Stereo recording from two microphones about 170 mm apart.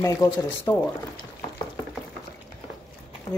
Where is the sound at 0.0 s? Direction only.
15° left (ahead or behind).